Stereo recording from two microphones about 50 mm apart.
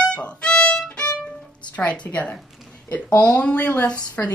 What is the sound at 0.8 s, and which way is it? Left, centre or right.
Violin, centre.